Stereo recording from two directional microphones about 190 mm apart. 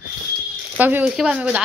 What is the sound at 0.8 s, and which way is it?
Speech, 10° right (ahead or behind).